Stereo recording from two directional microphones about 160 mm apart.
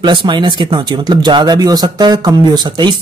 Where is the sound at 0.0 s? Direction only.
30° right (ahead or behind).